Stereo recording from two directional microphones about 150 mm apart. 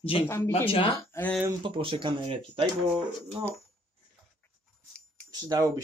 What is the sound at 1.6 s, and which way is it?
Speech, 35° right (ahead or behind).